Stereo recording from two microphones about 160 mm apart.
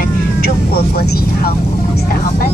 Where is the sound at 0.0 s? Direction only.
70° left (ahead or behind).